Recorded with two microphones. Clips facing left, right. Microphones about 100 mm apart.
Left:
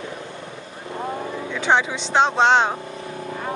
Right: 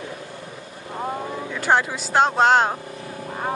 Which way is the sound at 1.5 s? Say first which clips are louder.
Left 1 dB; 5° right (ahead or behind).